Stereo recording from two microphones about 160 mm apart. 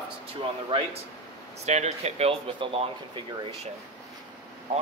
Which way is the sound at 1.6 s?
45° right (ahead or behind).